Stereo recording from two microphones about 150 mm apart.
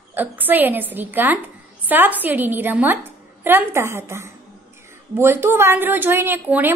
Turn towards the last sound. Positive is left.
turn(degrees=-10)  # may be behind; listen again after turning